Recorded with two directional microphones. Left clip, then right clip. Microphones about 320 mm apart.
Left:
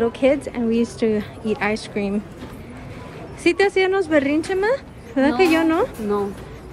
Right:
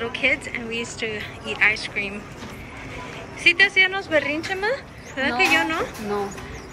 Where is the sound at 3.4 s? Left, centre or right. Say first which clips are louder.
Right 1 dB; centre.